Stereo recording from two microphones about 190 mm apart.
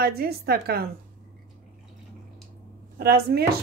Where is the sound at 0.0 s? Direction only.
55° right (ahead or behind).